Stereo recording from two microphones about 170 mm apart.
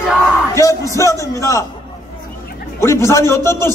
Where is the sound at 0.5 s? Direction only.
20° left (ahead or behind).